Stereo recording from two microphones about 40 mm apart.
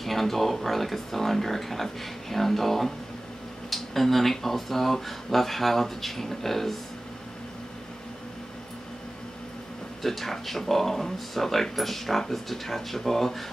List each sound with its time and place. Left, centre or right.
0.0 s speech: centre
10.0 s speech: centre